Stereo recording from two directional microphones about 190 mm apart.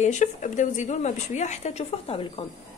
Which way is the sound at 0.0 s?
40° left (ahead or behind).